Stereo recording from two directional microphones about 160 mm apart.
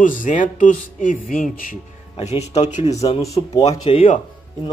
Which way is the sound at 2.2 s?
40° left (ahead or behind).